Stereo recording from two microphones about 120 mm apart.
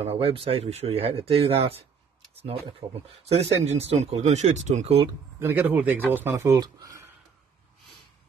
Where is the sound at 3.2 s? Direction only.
60° right (ahead or behind).